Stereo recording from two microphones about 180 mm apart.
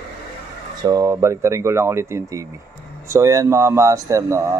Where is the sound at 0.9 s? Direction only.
20° right (ahead or behind).